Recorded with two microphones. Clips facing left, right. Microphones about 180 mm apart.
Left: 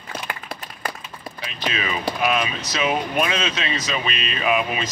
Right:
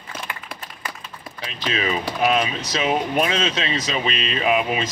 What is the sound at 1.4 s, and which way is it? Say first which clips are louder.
Speech: right 2 dB; 30° right (ahead or behind).